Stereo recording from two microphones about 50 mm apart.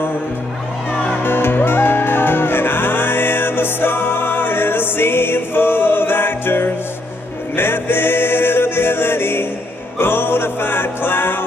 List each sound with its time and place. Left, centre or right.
1.2 s music: left